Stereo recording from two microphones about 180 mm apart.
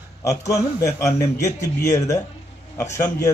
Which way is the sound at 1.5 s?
15° left (ahead or behind).